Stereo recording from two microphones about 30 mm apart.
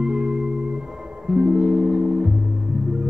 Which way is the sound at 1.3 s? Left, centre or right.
Right.